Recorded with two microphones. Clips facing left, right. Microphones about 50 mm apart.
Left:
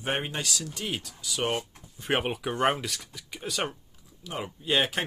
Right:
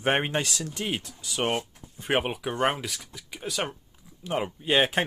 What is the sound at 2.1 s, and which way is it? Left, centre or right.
Speech, centre.